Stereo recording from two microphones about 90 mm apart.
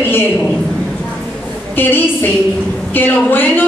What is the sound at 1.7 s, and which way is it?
A woman's voice, 25° left (ahead or behind).